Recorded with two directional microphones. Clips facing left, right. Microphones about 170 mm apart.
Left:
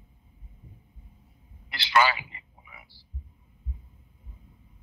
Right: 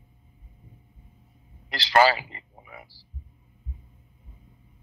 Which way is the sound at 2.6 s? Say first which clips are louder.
Right 9 dB; 50° right (ahead or behind).